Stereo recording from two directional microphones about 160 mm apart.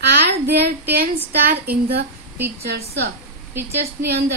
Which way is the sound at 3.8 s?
75° right (ahead or behind).